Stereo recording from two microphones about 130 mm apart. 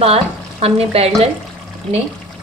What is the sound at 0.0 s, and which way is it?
Speech, 50° right (ahead or behind).